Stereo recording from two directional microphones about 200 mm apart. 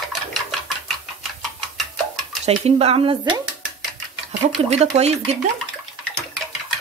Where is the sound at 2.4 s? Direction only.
30° right (ahead or behind).